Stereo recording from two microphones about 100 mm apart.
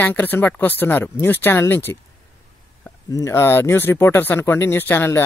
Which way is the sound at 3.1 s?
30° left (ahead or behind).